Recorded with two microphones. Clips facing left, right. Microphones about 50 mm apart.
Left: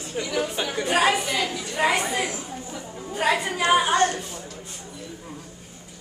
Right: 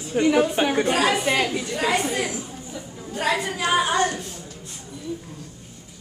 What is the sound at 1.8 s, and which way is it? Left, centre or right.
Speech, left.